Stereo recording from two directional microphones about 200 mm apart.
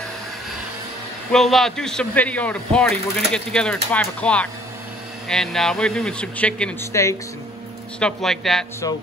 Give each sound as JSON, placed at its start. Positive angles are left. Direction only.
{"t": 1.3, "sound": "a man's voice", "side_deg": 0}
{"t": 8.0, "sound": "a man's voice", "side_deg": 0}